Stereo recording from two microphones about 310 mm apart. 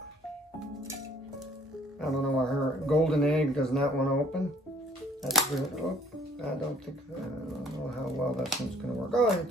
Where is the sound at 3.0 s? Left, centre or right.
Centre.